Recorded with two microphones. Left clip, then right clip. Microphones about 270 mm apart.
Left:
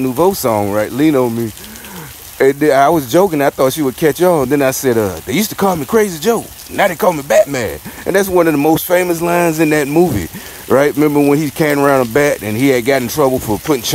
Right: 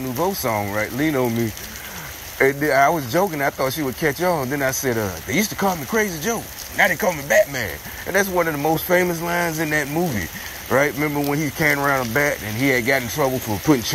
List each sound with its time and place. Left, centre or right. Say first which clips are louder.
0.0 s speech: left 9 dB; left
2.3 s speech: left 7 dB; left